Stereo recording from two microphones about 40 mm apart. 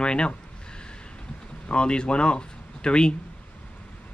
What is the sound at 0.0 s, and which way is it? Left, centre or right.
Speech, left.